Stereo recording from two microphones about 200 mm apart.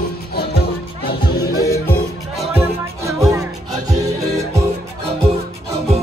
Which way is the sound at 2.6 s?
15° right (ahead or behind).